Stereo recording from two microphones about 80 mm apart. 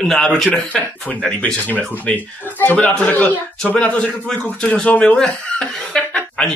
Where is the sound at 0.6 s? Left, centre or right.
Centre.